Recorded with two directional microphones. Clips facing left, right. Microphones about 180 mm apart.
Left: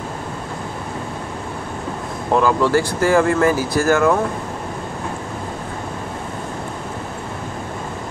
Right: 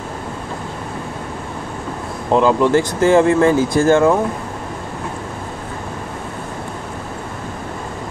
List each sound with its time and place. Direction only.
2.3 s speech: 20° right (ahead or behind)